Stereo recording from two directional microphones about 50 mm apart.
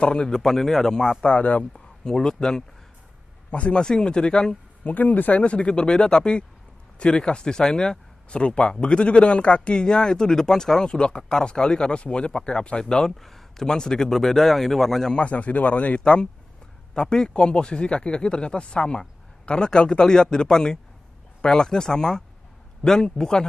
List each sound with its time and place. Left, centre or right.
0.0 s speech: centre
0.4 s speech: centre
1.2 s speech: left
2.0 s speech: centre
3.5 s speech: left
3.8 s speech: centre
4.8 s speech: left; by 15.1 s centre
15.1 s speech: left
16.0 s speech: centre